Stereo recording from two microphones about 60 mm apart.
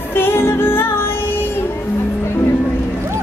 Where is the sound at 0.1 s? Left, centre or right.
Left.